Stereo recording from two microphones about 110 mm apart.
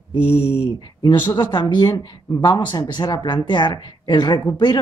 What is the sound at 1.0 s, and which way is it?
Speech, 40° left (ahead or behind).